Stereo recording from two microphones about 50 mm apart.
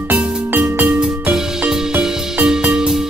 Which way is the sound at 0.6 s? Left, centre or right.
Right.